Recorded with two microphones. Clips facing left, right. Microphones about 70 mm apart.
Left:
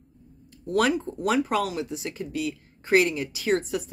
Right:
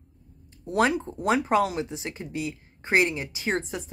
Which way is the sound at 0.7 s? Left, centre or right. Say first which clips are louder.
Even; right.